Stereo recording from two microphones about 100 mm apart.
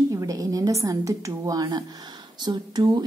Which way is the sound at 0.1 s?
35° right (ahead or behind).